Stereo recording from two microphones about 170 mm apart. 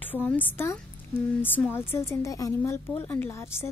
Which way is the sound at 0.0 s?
10° left (ahead or behind).